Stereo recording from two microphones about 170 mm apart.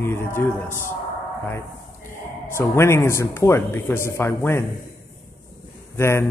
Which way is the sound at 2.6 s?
15° left (ahead or behind).